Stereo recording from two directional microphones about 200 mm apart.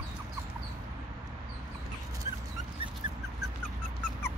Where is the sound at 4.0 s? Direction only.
10° left (ahead or behind).